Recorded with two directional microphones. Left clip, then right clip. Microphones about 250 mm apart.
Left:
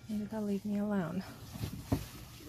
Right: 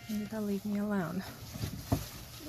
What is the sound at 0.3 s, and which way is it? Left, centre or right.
Speech, centre.